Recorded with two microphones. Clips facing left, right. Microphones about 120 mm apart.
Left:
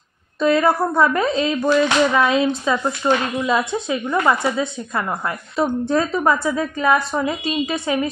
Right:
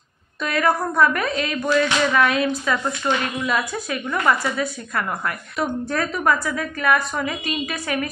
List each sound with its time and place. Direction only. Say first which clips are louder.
0.4 s a woman's voice: left 5 dB; 25° left (ahead or behind)